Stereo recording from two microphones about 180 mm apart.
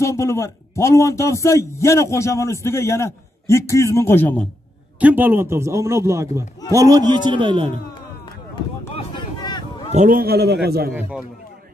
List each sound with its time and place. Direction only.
0.0 s a man's voice: 15° left (ahead or behind)
5.0 s a man's voice: 10° right (ahead or behind); by 7.7 s 30° right (ahead or behind)
9.4 s a sound: 25° left (ahead or behind)
9.9 s a man's voice: 50° right (ahead or behind)
10.9 s a man's voice: 5° right (ahead or behind)